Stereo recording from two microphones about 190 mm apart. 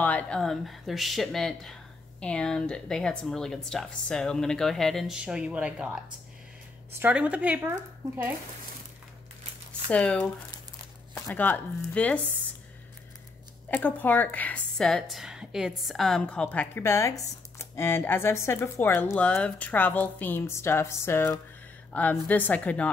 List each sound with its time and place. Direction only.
0.0 s speech: 5° left (ahead or behind)
7.0 s speech: 5° right (ahead or behind)
9.8 s speech: 5° left (ahead or behind)
11.2 s speech: 10° left (ahead or behind)
13.7 s speech: 10° left (ahead or behind)